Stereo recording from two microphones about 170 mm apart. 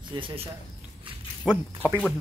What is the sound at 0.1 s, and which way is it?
Speech, 30° right (ahead or behind).